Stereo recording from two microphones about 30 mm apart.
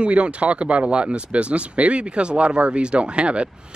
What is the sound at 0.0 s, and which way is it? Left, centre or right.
Speech, right.